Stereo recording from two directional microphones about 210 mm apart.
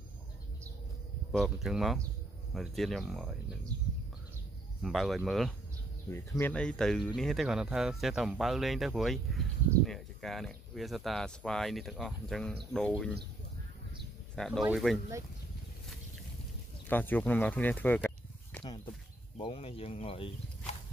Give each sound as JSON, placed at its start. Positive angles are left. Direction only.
{"t": 1.3, "sound": "speech", "side_deg": 0}
{"t": 4.8, "sound": "speech", "side_deg": 0}
{"t": 6.0, "sound": "speech", "side_deg": 10}
{"t": 14.3, "sound": "speech", "side_deg": 0}
{"t": 16.8, "sound": "speech", "side_deg": 10}
{"t": 19.3, "sound": "speech", "side_deg": 25}